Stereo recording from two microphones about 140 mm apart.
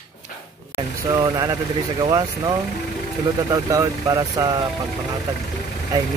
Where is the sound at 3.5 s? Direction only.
25° right (ahead or behind).